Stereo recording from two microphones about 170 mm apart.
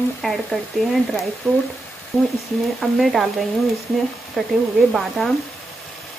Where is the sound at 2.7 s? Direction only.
Centre (ahead or behind).